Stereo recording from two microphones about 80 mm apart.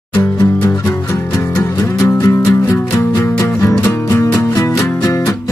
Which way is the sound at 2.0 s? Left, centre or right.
Left.